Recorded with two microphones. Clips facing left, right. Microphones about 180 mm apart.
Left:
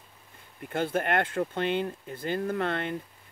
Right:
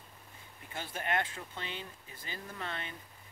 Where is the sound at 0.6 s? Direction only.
55° left (ahead or behind).